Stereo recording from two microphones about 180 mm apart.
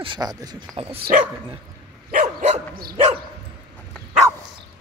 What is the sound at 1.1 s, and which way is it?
Dog, 50° right (ahead or behind).